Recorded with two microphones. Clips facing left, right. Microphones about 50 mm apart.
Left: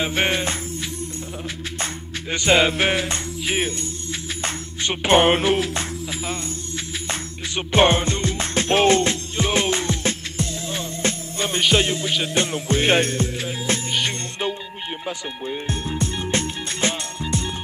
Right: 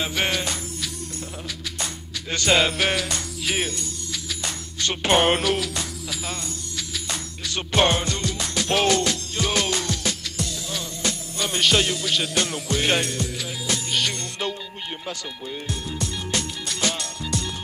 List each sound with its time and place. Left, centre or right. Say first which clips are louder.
0.0 s music: left 3 dB; left
2.2 s music: left 3 dB; centre
4.8 s speech: left 3 dB; left
7.1 s music: left 2 dB; left
13.9 s music: left 1 dB; centre
15.4 s music: left 5 dB; left